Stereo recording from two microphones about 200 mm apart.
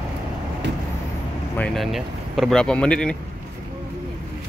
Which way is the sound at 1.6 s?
Centre (ahead or behind).